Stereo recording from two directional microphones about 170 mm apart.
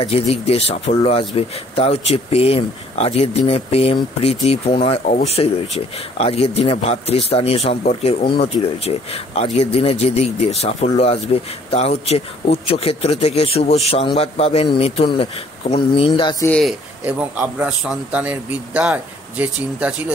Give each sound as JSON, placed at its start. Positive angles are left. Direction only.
{"t": 0.0, "sound": "speech", "side_deg": 35}
{"t": 16.0, "sound": "music", "side_deg": 30}
{"t": 16.4, "sound": "speech", "side_deg": 5}
{"t": 17.0, "sound": "a man's voice", "side_deg": -5}